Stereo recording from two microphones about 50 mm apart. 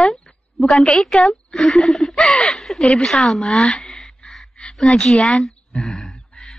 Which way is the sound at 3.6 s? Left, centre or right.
Centre.